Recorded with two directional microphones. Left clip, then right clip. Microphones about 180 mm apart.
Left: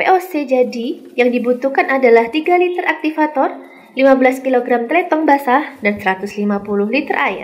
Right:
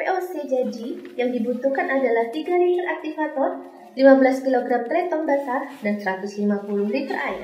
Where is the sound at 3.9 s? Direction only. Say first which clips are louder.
Left 3 dB; 15° left (ahead or behind).